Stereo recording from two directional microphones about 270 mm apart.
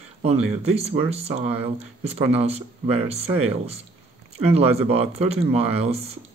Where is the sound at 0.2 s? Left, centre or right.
Right.